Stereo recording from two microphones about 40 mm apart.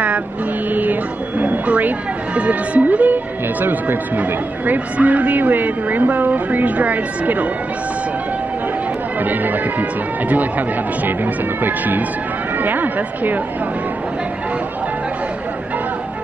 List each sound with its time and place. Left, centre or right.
1.4 s speech: right
3.6 s speech: right
9.2 s speech: right
11.2 s speech: right